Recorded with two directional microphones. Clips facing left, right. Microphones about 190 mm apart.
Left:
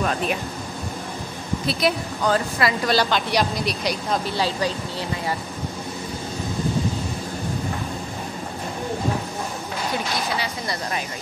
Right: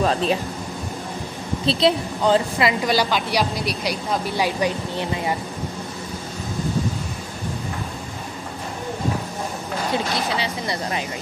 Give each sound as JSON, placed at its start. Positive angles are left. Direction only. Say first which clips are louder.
{"t": 0.0, "sound": "speech", "louder": "right 4 dB", "side_deg": -30}
{"t": 1.7, "sound": "speech", "louder": "right 4 dB", "side_deg": -25}
{"t": 10.3, "sound": "a sound", "louder": "right 2 dB", "side_deg": -25}